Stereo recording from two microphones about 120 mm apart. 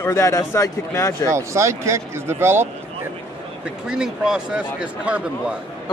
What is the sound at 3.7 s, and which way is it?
A man's voice, 5° right (ahead or behind).